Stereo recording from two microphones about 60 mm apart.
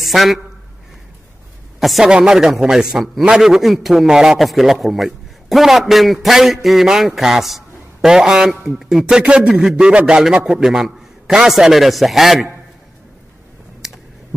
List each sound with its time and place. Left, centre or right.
0.0 s a man's voice: centre
1.8 s a man's voice: centre
2.0 s a man's voice: centre
9.0 s a man's voice: centre